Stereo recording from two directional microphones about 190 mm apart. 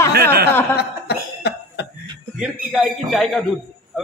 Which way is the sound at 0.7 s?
60° left (ahead or behind).